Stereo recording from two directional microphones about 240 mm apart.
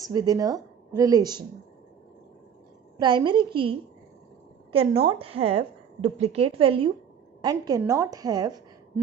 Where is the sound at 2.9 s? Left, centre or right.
Centre.